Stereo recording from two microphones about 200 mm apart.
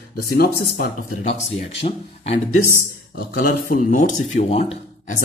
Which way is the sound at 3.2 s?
45° left (ahead or behind).